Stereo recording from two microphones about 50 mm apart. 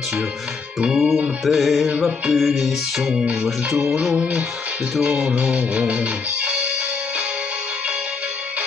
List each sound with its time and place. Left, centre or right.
0.8 s speech: centre
1.4 s music: centre
1.9 s music: centre
2.3 s music: centre
4.2 s music: right